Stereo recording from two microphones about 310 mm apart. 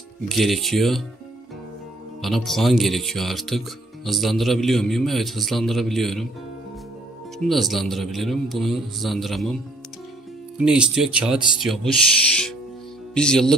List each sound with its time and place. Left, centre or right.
0.3 s speech: centre
2.2 s speech: centre
7.3 s speech: centre
10.6 s speech: centre
13.1 s speech: centre